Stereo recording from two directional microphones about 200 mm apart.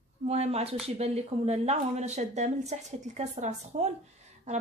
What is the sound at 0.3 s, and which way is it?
Speech, 30° right (ahead or behind).